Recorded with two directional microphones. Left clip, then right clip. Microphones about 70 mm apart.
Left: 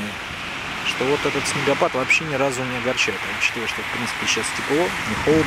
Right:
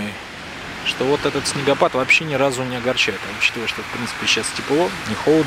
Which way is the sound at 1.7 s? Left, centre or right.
Right.